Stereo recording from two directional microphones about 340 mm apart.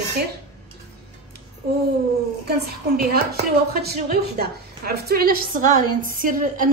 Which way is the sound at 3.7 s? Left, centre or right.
Right.